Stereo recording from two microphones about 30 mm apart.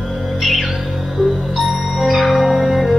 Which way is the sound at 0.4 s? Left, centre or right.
Centre.